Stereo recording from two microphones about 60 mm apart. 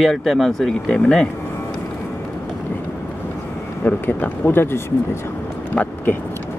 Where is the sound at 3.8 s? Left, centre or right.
Left.